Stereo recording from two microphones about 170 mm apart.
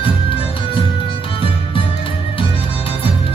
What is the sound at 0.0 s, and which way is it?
Music, 30° left (ahead or behind).